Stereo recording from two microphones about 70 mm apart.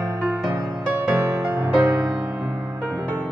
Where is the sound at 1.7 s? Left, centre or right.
Right.